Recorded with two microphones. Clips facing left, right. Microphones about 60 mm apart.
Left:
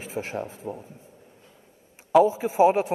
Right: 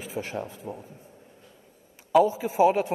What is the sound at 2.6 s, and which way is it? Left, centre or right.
Speech, left.